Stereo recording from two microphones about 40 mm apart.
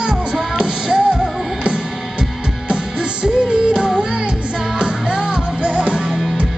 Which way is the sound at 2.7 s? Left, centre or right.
Centre.